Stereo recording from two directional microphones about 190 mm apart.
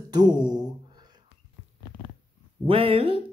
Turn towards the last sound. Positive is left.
turn(degrees=-30)  # may be behind; listen again after turning